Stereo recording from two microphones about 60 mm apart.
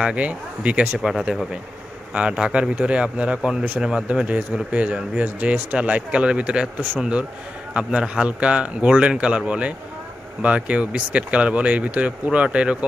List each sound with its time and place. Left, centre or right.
0.0 s speech: right
0.9 s speech: centre
2.1 s speech: centre